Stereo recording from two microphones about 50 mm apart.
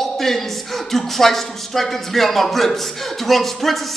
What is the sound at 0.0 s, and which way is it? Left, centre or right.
Speech, centre.